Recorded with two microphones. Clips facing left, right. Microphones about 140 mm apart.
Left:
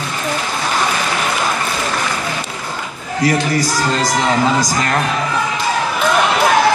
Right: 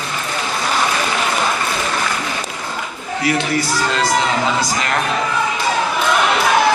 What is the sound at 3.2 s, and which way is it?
Speech, 40° left (ahead or behind).